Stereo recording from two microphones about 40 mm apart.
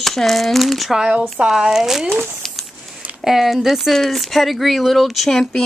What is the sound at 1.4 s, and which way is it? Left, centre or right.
Speech, right.